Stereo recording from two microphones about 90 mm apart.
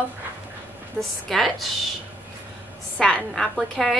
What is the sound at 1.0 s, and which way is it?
Speech, 20° right (ahead or behind).